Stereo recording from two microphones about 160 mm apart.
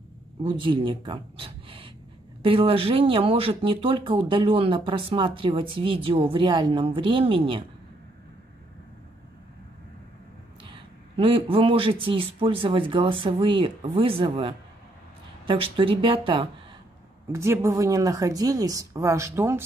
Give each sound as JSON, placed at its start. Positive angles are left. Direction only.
{"t": 0.4, "sound": "speech", "side_deg": -30}
{"t": 10.6, "sound": "speech", "side_deg": -30}
{"t": 17.3, "sound": "a woman's voice", "side_deg": -15}